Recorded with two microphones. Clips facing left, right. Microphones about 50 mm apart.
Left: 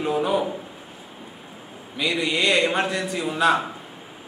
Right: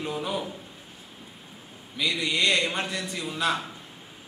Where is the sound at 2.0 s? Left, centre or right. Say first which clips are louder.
Left 3 dB; centre.